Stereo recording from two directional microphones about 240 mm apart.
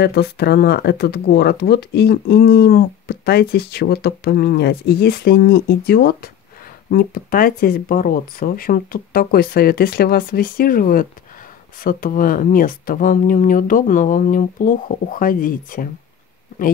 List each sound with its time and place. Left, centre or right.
0.0 s speech: left